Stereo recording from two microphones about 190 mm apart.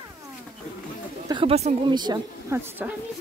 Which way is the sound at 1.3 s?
30° right (ahead or behind).